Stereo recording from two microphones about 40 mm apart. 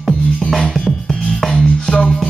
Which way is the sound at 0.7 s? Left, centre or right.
Centre.